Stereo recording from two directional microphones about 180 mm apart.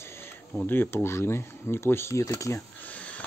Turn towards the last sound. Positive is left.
turn(degrees=10)  # may be behind; listen again after turning